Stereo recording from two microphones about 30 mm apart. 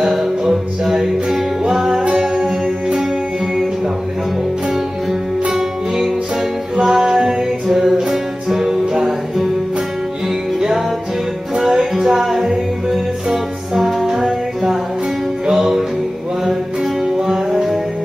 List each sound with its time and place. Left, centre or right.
0.1 s music: centre
5.5 s music: centre
11.6 s music: centre
15.5 s music: centre
17.0 s music: centre